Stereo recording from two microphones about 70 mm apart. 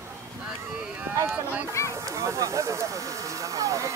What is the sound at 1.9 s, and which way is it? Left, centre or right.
Speech, right.